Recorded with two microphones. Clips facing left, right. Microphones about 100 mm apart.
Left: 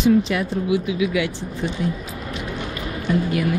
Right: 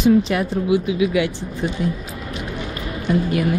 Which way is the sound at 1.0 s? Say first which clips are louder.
Right 3 dB; 35° right (ahead or behind).